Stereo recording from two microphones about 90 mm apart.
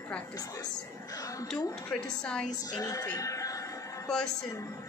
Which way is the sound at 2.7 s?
40° left (ahead or behind).